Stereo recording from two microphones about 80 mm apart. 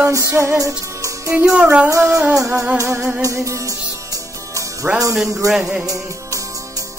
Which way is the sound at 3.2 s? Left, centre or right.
Right.